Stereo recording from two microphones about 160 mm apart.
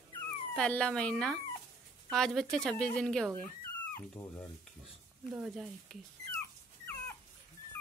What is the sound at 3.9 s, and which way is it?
Speech, 15° left (ahead or behind).